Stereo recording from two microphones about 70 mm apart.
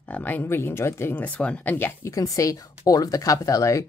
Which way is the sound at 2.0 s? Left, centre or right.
Left.